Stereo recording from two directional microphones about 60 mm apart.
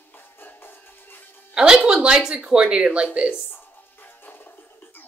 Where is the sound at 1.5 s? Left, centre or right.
Centre.